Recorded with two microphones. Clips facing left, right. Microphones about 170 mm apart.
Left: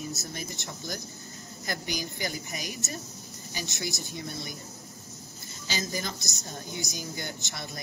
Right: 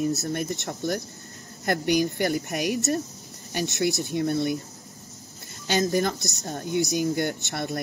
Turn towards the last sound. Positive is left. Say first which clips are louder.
# right 10 dB
turn(degrees=-60)  # may be behind; listen again after turning